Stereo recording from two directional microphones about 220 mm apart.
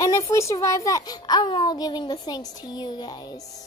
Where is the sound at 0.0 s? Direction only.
15° left (ahead or behind).